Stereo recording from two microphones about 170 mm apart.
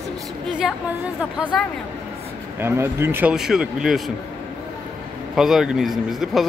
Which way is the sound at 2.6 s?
15° right (ahead or behind).